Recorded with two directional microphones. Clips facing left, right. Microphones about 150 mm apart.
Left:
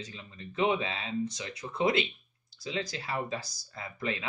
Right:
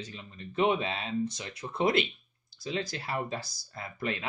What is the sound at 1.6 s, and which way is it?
Speech, 20° right (ahead or behind).